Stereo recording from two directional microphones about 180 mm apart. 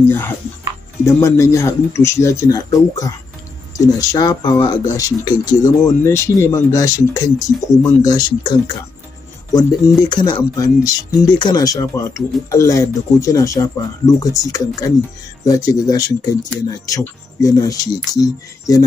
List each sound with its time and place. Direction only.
1.0 s a man's voice: 15° left (ahead or behind)